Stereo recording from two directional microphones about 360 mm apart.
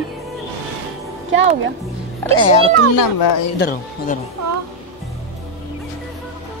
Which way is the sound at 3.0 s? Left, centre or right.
Left.